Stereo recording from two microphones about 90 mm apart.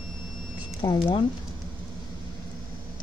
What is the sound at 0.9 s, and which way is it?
Speech, 70° left (ahead or behind).